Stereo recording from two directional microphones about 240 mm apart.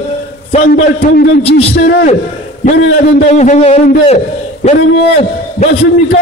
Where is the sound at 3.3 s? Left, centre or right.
Left.